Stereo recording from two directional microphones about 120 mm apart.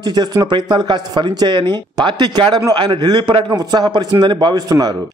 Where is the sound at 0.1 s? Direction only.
35° right (ahead or behind).